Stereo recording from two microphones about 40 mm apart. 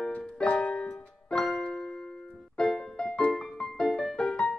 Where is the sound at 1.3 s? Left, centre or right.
Centre.